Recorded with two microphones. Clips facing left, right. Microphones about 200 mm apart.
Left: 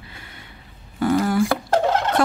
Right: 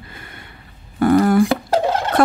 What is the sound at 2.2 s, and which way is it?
Turkey, 55° right (ahead or behind).